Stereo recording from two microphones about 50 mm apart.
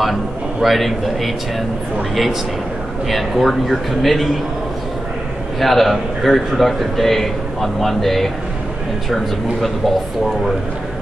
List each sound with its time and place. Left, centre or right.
0.0 s a man's voice: centre
3.1 s a man's voice: centre
5.6 s a man's voice: centre